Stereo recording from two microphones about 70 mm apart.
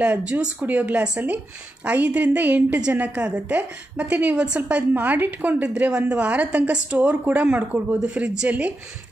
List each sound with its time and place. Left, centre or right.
0.0 s a woman's voice: centre